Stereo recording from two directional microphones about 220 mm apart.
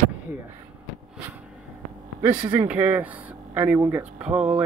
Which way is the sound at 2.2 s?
5° right (ahead or behind).